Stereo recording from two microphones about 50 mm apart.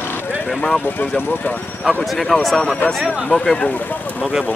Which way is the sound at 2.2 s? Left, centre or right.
Centre.